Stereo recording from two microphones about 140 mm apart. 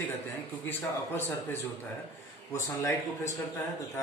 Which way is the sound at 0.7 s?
15° left (ahead or behind).